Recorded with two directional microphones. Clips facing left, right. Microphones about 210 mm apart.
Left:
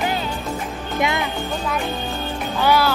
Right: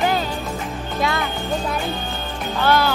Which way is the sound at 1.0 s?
20° left (ahead or behind).